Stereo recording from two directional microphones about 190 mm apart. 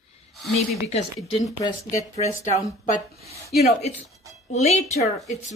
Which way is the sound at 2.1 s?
35° left (ahead or behind).